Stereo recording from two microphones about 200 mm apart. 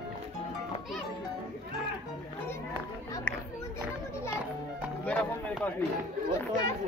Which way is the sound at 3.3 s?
10° left (ahead or behind).